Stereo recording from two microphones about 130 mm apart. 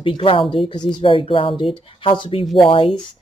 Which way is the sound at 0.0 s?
45° left (ahead or behind).